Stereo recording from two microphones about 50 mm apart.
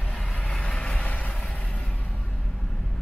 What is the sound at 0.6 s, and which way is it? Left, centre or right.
Vehicle, centre.